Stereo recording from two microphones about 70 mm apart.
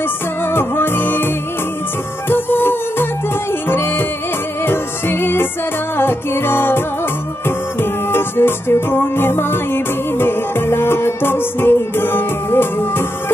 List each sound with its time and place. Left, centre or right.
0.5 s music: left